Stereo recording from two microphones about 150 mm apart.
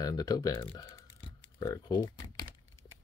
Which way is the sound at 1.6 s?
20° left (ahead or behind).